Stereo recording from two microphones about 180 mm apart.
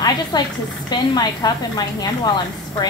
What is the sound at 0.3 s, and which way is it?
A woman's voice, 20° left (ahead or behind).